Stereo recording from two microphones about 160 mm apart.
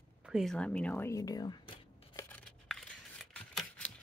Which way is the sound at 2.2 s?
10° left (ahead or behind).